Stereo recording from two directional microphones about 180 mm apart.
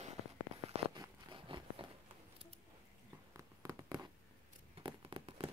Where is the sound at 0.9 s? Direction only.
25° right (ahead or behind).